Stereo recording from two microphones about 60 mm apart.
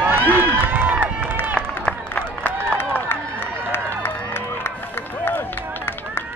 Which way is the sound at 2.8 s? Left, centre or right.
Left.